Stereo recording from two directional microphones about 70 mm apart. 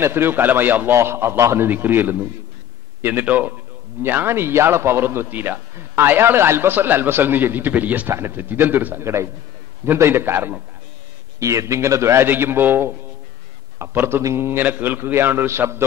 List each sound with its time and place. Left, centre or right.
0.0 s a man's voice: right
0.9 s a man's voice: right
9.0 s a man's voice: right
11.3 s a man's voice: right